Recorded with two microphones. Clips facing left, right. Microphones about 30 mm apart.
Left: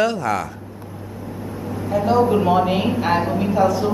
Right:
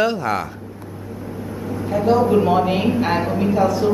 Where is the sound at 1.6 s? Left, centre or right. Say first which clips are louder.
Right 2 dB; centre.